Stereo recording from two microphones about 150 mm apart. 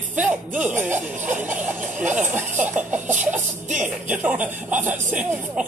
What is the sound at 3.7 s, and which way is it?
Music, 55° right (ahead or behind).